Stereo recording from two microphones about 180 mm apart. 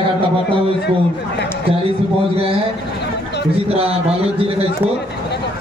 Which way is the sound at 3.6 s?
35° right (ahead or behind).